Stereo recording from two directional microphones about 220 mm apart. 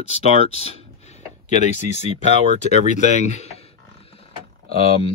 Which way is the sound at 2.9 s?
30° left (ahead or behind).